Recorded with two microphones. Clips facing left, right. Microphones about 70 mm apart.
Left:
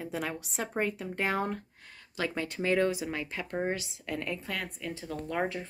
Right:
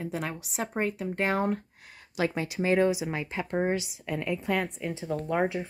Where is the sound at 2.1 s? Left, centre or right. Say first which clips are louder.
Right 4 dB; centre.